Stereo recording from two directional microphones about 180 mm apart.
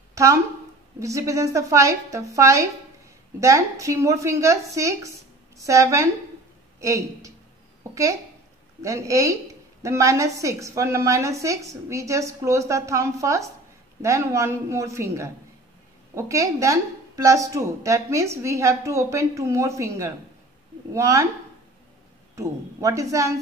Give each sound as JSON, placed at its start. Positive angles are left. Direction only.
{"t": 0.1, "sound": "a sound", "side_deg": -15}
{"t": 0.9, "sound": "a woman's voice", "side_deg": -15}
{"t": 22.3, "sound": "a woman's voice", "side_deg": -20}